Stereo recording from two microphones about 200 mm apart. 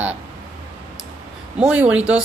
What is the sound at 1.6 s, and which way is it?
Speech, 5° right (ahead or behind).